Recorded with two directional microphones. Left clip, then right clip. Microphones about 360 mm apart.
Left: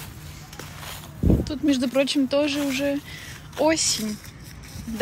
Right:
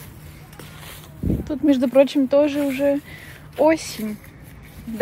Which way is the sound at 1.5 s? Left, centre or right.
Centre.